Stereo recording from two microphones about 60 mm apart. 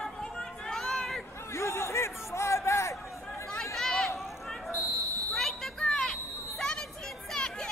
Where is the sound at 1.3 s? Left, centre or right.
Left.